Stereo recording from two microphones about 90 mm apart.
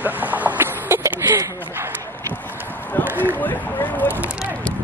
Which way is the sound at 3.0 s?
20° right (ahead or behind).